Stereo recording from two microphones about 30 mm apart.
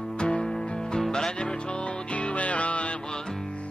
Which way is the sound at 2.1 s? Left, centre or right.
Left.